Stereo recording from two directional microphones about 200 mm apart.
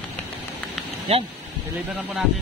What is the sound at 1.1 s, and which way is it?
Speech, 30° right (ahead or behind).